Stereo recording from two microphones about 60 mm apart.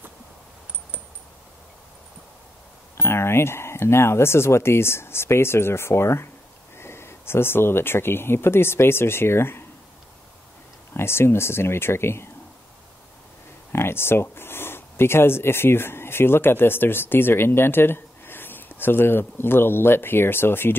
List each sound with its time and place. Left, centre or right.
3.0 s speech: left
10.9 s speech: left
13.7 s speech: left